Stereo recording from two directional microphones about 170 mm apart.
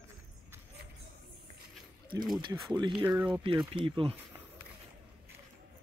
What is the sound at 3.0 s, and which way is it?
Speech, 10° right (ahead or behind).